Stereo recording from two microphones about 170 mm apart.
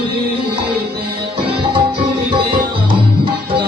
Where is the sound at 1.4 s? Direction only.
30° right (ahead or behind).